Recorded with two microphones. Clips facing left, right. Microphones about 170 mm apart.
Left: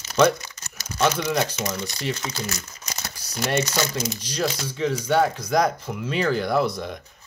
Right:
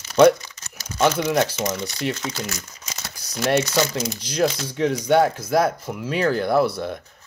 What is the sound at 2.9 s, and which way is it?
Crumpling, 10° left (ahead or behind).